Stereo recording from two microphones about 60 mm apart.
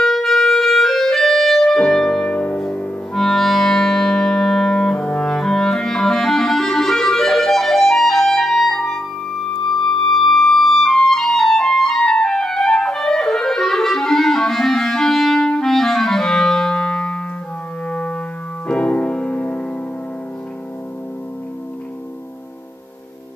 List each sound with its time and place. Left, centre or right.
0.0 s clarinet: centre
3.2 s music: centre; by 19.6 s left